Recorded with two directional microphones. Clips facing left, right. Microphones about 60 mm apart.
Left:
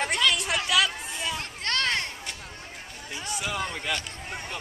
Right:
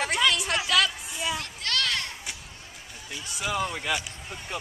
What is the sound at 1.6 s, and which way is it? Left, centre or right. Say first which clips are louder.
Children playing: left 3 dB; left.